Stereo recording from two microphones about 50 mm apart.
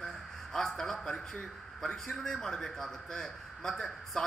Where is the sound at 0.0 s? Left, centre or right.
Centre.